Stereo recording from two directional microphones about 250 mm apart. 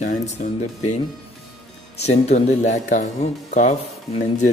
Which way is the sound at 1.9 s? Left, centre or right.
Left.